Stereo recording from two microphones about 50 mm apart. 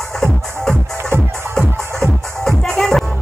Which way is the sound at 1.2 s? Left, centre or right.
Right.